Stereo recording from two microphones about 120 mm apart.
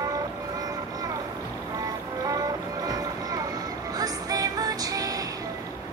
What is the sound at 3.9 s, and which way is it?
Music, 30° right (ahead or behind).